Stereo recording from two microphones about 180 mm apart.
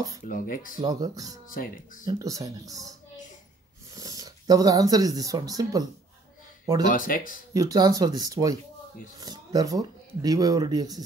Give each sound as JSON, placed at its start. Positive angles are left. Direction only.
{"t": 0.3, "sound": "speech", "side_deg": 50}
{"t": 0.7, "sound": "speech", "side_deg": -20}
{"t": 1.5, "sound": "speech", "side_deg": 50}
{"t": 2.0, "sound": "speech", "side_deg": -20}
{"t": 3.9, "sound": "speech", "side_deg": -20}
{"t": 6.9, "sound": "speech", "side_deg": 50}
{"t": 7.5, "sound": "speech", "side_deg": -20}